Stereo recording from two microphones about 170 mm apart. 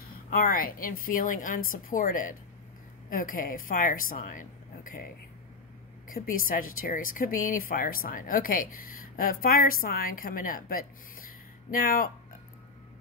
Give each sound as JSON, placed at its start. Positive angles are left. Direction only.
{"t": 0.0, "sound": "speech", "side_deg": 60}
{"t": 6.0, "sound": "speech", "side_deg": 55}